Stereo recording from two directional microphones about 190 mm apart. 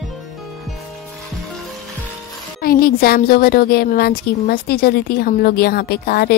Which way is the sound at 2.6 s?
50° left (ahead or behind).